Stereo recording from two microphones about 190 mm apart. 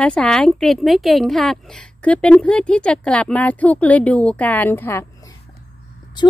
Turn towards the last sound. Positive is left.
turn(degrees=25)  # may be behind; listen again after turning